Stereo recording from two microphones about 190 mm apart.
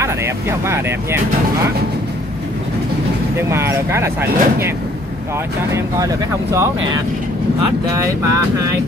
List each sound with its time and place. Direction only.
0.0 s speech: 15° right (ahead or behind)
3.3 s speech: 15° right (ahead or behind)
5.8 s speech: 15° right (ahead or behind)
7.9 s speech: 15° right (ahead or behind)